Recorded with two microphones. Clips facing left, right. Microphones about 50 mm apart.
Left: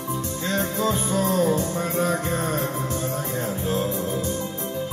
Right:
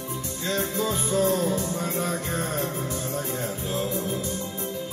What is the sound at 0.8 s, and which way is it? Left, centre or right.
Music, left.